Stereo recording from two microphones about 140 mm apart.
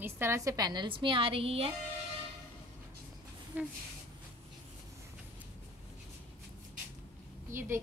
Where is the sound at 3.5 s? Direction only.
10° right (ahead or behind).